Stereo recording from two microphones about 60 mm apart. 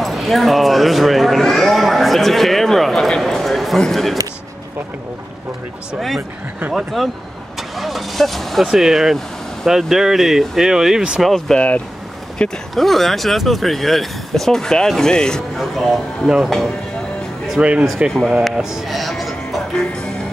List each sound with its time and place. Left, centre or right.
0.0 s speech: centre
5.9 s speech: centre
11.2 s speech: centre
11.5 s speech: left
12.7 s speech: centre
17.6 s speech: centre
18.6 s speech: centre